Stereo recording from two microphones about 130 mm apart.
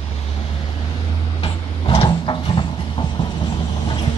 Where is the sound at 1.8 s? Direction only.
50° left (ahead or behind).